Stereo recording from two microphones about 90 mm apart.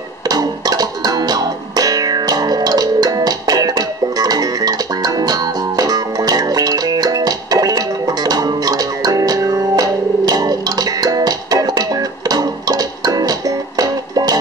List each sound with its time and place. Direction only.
0.3 s music: 45° right (ahead or behind)